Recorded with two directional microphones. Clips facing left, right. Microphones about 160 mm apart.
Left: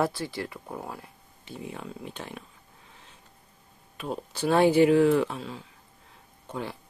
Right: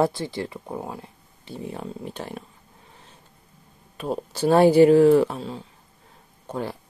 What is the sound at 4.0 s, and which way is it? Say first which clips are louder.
Speech: right 6 dB; 40° right (ahead or behind).